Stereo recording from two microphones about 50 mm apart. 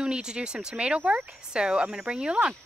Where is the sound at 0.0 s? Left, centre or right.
Centre.